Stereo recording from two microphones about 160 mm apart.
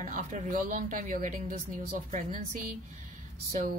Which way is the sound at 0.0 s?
50° right (ahead or behind).